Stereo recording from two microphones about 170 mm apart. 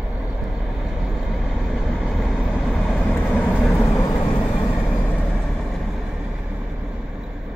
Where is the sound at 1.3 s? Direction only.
Centre (ahead or behind).